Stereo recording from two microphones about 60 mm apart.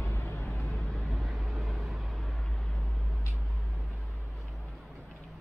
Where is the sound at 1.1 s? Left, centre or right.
Centre.